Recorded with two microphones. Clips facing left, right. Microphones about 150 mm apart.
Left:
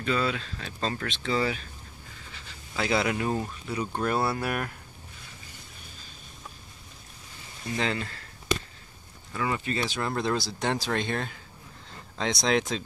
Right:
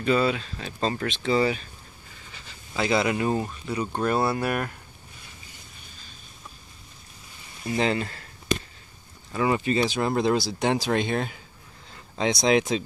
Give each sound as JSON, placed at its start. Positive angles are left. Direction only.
{"t": 0.0, "sound": "speech", "side_deg": -15}
{"t": 2.7, "sound": "speech", "side_deg": -5}
{"t": 7.7, "sound": "speech", "side_deg": -20}
{"t": 9.3, "sound": "speech", "side_deg": -20}